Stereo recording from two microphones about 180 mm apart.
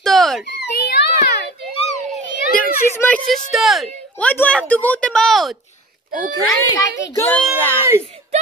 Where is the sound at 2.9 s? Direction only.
10° left (ahead or behind).